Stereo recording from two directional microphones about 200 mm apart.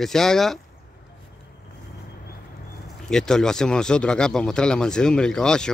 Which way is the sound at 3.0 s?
5° left (ahead or behind).